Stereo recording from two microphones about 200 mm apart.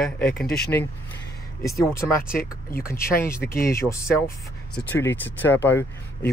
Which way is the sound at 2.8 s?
15° left (ahead or behind).